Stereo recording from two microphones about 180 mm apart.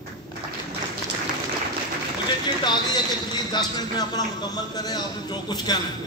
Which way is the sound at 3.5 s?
25° left (ahead or behind).